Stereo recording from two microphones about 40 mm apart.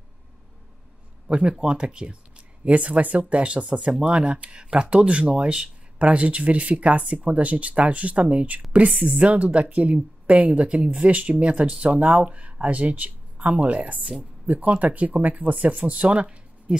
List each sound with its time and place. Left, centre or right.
1.6 s speech: right
2.6 s speech: right